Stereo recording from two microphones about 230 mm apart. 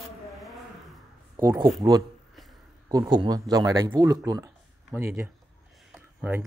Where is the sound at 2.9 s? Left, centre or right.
Centre.